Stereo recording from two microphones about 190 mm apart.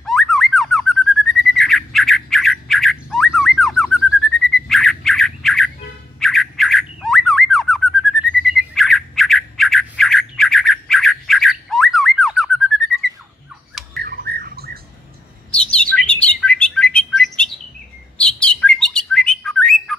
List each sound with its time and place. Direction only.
0.0 s bird: centre (ahead or behind)
6.1 s squawk: centre (ahead or behind)
13.9 s bird: 55° right (ahead or behind)
15.5 s bird: 5° left (ahead or behind)